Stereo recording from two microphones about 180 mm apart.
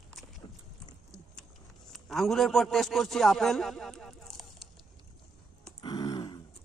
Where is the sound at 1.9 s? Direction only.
Centre (ahead or behind).